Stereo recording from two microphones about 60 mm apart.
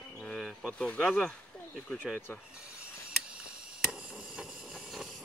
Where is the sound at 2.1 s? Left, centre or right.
Centre.